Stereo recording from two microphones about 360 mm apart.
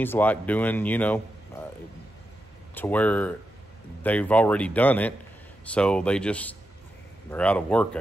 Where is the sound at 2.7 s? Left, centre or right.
Centre.